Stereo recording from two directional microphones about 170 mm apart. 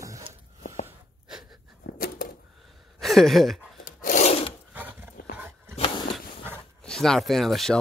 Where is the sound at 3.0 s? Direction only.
Centre (ahead or behind).